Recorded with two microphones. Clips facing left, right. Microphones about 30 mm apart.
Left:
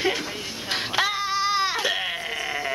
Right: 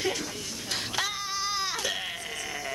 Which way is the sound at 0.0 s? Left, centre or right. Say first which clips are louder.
Left 5 dB; left.